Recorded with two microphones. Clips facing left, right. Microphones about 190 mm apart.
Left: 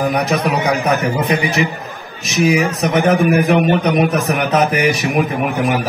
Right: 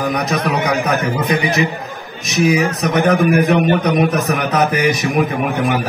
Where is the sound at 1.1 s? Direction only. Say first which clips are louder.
Even; 30° left (ahead or behind).